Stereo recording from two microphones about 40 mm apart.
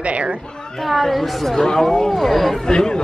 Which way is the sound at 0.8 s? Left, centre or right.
Centre.